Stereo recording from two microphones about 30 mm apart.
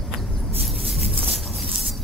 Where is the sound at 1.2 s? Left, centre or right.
Right.